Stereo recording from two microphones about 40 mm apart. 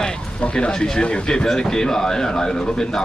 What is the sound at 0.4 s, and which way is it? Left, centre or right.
A man's voice, left.